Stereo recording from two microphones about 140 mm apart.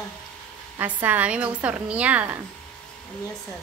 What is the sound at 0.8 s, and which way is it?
A woman's voice, 15° right (ahead or behind).